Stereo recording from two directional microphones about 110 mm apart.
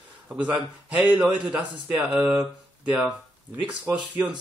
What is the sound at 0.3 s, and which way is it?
Speech, 10° right (ahead or behind).